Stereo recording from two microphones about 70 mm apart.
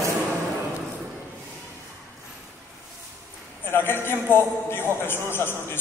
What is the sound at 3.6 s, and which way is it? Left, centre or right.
A man's voice, left.